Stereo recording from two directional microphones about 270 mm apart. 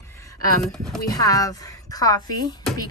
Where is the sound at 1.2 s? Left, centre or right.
Centre.